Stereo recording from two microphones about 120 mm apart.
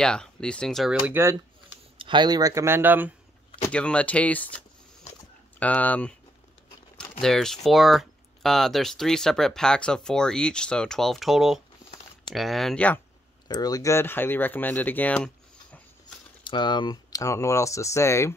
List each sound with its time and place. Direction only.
0.0 s speech: 5° left (ahead or behind)
1.2 s speech: 20° right (ahead or behind)
2.0 s speech: 40° right (ahead or behind); by 3.1 s 15° right (ahead or behind)
3.7 s speech: 10° left (ahead or behind)
5.6 s speech: 15° left (ahead or behind)
13.5 s speech: 30° left (ahead or behind); by 15.8 s 10° left (ahead or behind)
16.4 s speech: 40° left (ahead or behind); by 18.3 s 25° left (ahead or behind)